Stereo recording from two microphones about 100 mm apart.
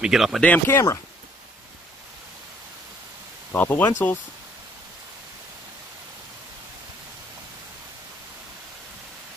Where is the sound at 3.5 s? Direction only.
20° left (ahead or behind).